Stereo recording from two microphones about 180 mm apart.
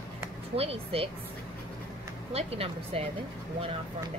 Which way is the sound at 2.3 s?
35° right (ahead or behind).